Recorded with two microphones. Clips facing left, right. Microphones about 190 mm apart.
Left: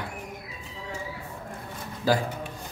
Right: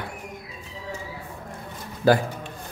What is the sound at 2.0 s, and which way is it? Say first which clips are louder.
Speech: right 5 dB; 60° right (ahead or behind).